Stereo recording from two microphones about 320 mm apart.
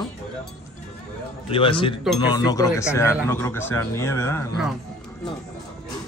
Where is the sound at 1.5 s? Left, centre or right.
Centre.